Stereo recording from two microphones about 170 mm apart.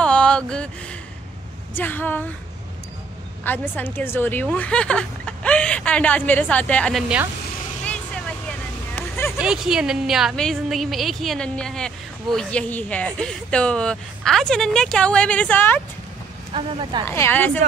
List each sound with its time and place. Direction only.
0.0 s a sound: 5° left (ahead or behind)
1.7 s speech: 10° left (ahead or behind)
3.4 s speech: 10° left (ahead or behind)
7.8 s vehicle: 5° left (ahead or behind)
9.4 s a woman's voice: 5° right (ahead or behind)
16.5 s speech: 30° right (ahead or behind)
17.0 s speech: 15° left (ahead or behind)